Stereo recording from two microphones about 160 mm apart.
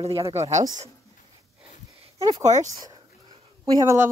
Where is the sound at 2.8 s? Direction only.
25° right (ahead or behind).